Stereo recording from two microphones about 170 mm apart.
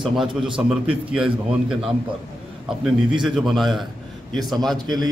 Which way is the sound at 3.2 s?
Centre (ahead or behind).